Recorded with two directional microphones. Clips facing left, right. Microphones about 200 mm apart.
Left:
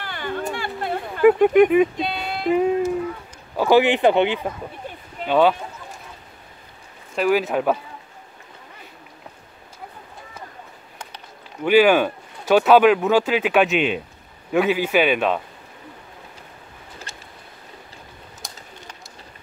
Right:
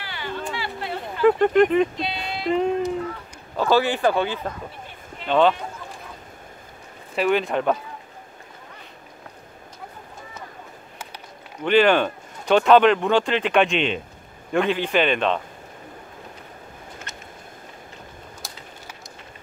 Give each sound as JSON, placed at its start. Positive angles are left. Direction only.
{"t": 0.0, "sound": "a sound", "side_deg": 50}
{"t": 1.2, "sound": "speech", "side_deg": 10}
{"t": 2.0, "sound": "music", "side_deg": 50}
{"t": 3.5, "sound": "speech", "side_deg": 15}
{"t": 7.2, "sound": "speech", "side_deg": 5}
{"t": 11.6, "sound": "speech", "side_deg": 10}
{"t": 17.1, "sound": "vehicle", "side_deg": 30}
{"t": 18.4, "sound": "a sound", "side_deg": 0}